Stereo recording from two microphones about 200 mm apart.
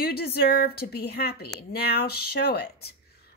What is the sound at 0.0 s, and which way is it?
Speech, 50° left (ahead or behind).